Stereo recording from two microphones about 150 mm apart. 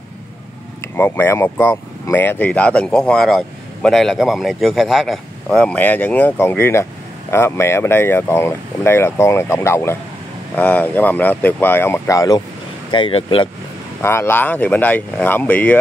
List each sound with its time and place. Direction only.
0.9 s speech: 15° left (ahead or behind)
12.9 s speech: 35° left (ahead or behind)
14.0 s speech: 15° left (ahead or behind)